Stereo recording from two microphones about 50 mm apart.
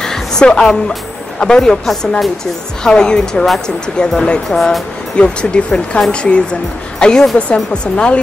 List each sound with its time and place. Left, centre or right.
0.0 s music: centre
1.4 s speech: centre
2.8 s speech: centre
5.1 s a woman's voice: centre